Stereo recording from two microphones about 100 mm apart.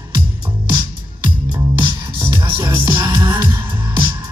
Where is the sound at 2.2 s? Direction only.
50° right (ahead or behind).